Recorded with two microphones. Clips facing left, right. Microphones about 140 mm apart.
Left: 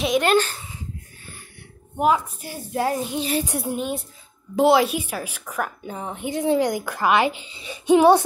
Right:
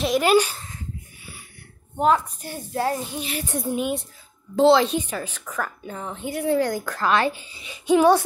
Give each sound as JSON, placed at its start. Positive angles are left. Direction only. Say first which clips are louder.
{"t": 0.0, "sound": "a child's voice", "louder": "right 1 dB", "side_deg": 0}
{"t": 2.0, "sound": "a woman's voice", "louder": "even", "side_deg": 10}
{"t": 3.4, "sound": "a child's voice", "louder": "right 1 dB", "side_deg": 5}
{"t": 7.8, "sound": "music", "louder": "left 2 dB", "side_deg": 20}